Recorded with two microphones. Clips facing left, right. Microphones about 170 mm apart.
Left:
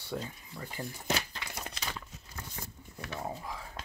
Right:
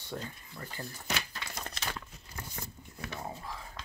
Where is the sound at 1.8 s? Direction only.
Centre (ahead or behind).